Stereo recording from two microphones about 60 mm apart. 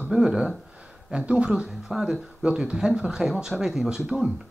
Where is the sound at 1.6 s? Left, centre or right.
Centre.